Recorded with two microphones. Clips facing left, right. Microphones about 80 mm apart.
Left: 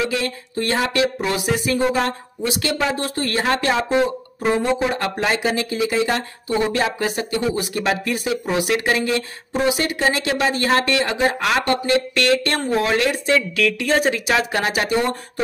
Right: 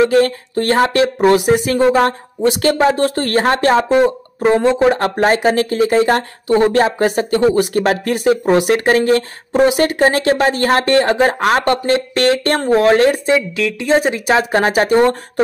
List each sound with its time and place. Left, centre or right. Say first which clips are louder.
0.0 s speech: right 11 dB; right
0.8 s speech: right 5 dB; right
1.5 s speech: right 7 dB; right
4.9 s speech: right 7 dB; right
13.3 s speech: right 3 dB; right
14.2 s speech: right 6 dB; right